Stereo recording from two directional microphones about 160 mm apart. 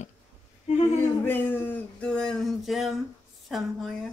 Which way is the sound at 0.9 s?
15° left (ahead or behind).